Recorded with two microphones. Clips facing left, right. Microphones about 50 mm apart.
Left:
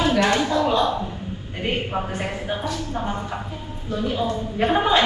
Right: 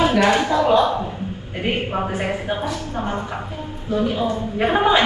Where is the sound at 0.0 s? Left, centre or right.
Centre.